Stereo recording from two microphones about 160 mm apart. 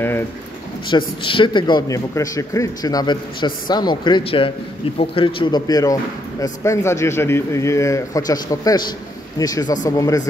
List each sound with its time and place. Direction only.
0.8 s a man's voice: 30° left (ahead or behind)